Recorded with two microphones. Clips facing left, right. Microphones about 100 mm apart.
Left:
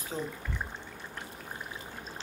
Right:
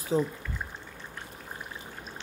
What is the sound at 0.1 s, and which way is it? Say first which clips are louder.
Speech: right 10 dB; 35° right (ahead or behind).